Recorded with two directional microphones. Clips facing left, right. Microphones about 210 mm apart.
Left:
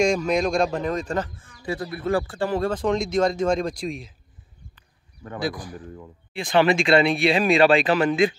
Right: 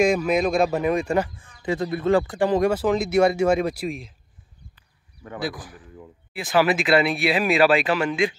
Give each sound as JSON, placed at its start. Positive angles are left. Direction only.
{"t": 0.0, "sound": "speech", "side_deg": -5}
{"t": 5.4, "sound": "speech", "side_deg": -5}
{"t": 7.8, "sound": "speech", "side_deg": 35}